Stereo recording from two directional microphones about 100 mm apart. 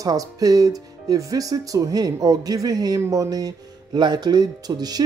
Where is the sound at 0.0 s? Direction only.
35° right (ahead or behind).